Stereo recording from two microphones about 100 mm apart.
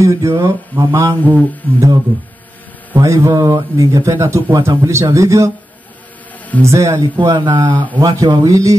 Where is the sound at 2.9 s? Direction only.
30° right (ahead or behind).